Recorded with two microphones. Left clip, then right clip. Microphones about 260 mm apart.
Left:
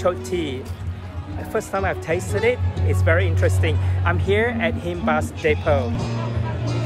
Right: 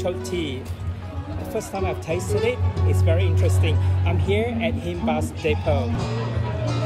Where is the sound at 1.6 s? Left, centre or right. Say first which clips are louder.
Left 4 dB; left.